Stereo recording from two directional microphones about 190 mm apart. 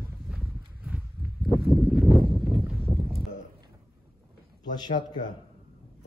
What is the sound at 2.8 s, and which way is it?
Clip-clop, 10° right (ahead or behind).